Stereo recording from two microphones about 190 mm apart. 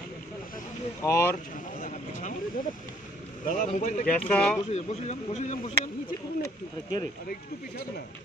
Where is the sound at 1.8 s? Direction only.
40° left (ahead or behind).